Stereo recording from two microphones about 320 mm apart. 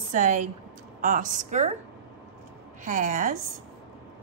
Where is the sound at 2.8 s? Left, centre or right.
Right.